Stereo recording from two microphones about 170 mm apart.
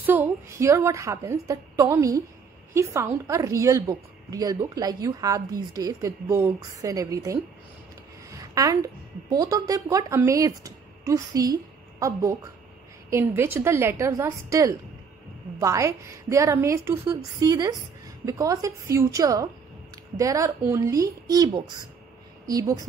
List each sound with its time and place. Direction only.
0.0 s a woman's voice: 10° right (ahead or behind)